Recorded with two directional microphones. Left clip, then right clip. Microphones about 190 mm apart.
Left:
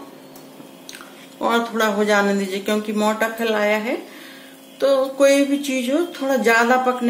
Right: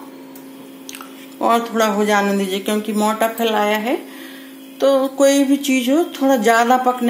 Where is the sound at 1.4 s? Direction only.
20° right (ahead or behind).